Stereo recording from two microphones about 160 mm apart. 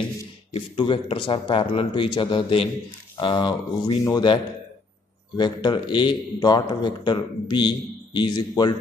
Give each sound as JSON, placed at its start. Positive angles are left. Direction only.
{"t": 0.5, "sound": "a man's voice", "side_deg": 35}
{"t": 5.4, "sound": "a man's voice", "side_deg": 30}